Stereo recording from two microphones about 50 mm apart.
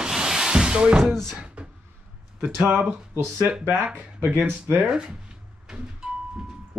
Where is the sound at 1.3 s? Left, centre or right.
Centre.